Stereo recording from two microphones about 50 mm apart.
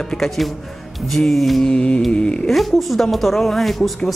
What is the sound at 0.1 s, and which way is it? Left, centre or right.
A man's voice, centre.